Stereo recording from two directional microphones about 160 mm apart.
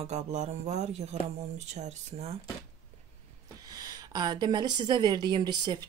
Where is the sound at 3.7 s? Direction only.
25° right (ahead or behind).